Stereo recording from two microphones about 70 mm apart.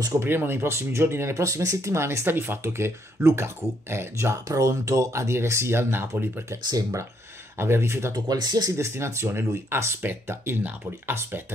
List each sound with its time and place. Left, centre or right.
0.2 s speech: right
1.3 s speech: right
4.5 s speech: right
7.5 s speech: right
8.3 s speech: right
8.7 s speech: right